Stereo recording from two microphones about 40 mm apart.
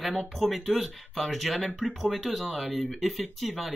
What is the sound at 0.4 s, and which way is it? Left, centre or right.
Speech, centre.